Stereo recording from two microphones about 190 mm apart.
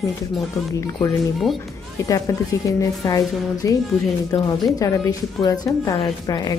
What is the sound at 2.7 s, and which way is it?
A woman's voice, 15° left (ahead or behind).